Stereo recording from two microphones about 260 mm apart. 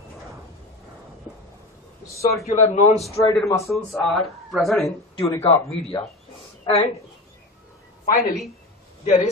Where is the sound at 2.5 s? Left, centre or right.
Left.